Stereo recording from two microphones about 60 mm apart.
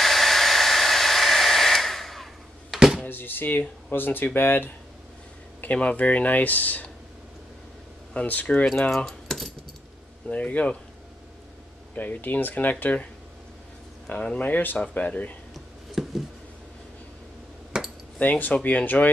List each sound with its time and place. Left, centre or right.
0.0 s hair dryer: centre
2.7 s a sound: centre
3.1 s speech: left
5.6 s speech: left
8.1 s speech: left
8.9 s keys jangling: centre
10.2 s speech: left
11.9 s speech: left
14.0 s speech: centre
15.5 s a sound: centre
17.7 s a sound: centre
18.2 s speech: left